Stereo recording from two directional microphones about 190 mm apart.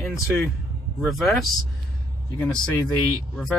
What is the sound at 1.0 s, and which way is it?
Speech, centre (ahead or behind).